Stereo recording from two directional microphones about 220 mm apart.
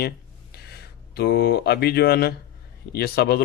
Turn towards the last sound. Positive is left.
turn(degrees=45)  # may be behind; listen again after turning